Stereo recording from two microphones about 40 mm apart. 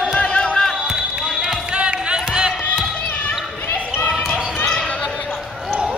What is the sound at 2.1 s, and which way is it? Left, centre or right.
Basketball bounce, centre.